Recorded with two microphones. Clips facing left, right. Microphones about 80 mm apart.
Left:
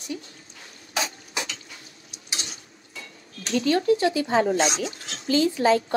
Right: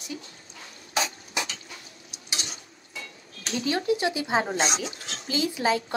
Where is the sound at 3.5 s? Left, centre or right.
Centre.